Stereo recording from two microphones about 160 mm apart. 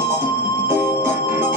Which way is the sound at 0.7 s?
15° right (ahead or behind).